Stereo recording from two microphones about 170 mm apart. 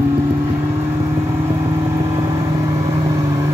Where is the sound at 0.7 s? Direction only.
20° right (ahead or behind).